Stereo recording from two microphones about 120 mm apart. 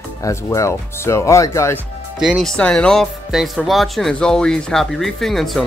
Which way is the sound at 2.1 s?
Centre (ahead or behind).